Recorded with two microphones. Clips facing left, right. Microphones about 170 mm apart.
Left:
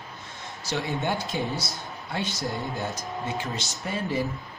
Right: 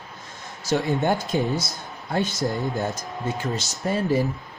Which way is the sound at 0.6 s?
45° right (ahead or behind).